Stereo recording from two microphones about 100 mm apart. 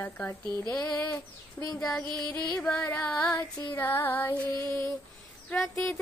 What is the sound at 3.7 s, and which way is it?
Music, 25° left (ahead or behind).